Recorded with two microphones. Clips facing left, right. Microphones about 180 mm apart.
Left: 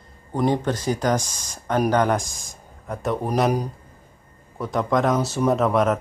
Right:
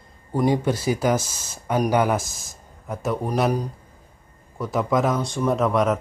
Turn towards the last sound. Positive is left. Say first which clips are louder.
# left 1 dB
turn(degrees=0)  # may be behind; listen again after turning